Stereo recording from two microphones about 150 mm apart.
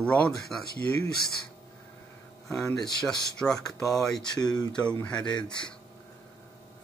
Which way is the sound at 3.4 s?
10° left (ahead or behind).